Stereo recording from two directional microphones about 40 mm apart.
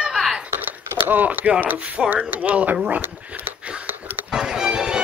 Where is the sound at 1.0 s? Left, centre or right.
Right.